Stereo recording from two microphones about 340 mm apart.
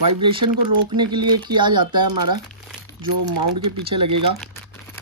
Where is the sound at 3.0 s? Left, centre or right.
Right.